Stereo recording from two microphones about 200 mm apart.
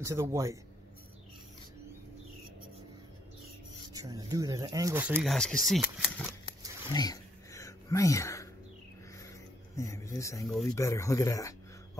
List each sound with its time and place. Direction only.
0.0 s speech: 15° right (ahead or behind)
3.9 s speech: 15° right (ahead or behind); by 6.2 s centre (ahead or behind)
6.9 s a sound: 20° left (ahead or behind)
9.8 s speech: 15° left (ahead or behind)